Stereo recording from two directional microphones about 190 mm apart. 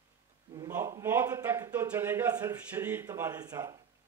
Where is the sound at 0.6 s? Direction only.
15° right (ahead or behind).